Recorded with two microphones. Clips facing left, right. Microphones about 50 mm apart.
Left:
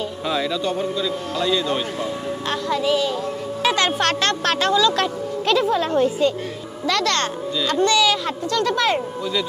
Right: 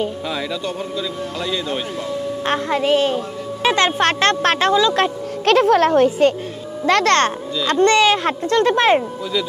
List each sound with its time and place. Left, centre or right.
1.0 s a man's voice: centre
2.4 s speech: right
3.6 s speech: right
5.4 s speech: right
6.9 s speech: right